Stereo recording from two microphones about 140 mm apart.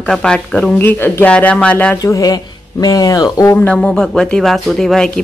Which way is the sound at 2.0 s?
25° left (ahead or behind).